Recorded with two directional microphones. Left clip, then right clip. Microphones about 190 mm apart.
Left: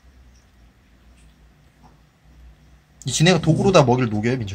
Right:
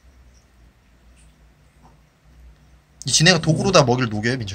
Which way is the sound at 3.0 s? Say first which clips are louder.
Right 2 dB; 5° left (ahead or behind).